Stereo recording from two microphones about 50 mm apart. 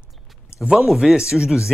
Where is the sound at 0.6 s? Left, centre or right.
Centre.